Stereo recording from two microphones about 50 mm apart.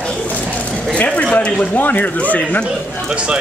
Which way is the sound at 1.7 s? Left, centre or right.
Left.